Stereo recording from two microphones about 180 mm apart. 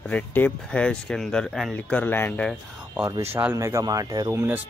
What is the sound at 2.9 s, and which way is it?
Speech, 15° right (ahead or behind).